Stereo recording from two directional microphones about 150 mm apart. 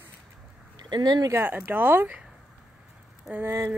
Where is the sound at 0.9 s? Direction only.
25° right (ahead or behind).